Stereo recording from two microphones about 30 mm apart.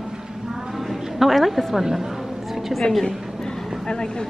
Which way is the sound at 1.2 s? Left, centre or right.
Centre.